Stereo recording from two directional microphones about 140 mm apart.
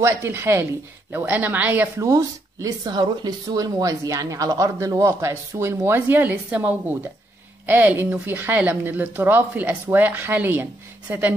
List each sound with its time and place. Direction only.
0.0 s speech: 15° right (ahead or behind)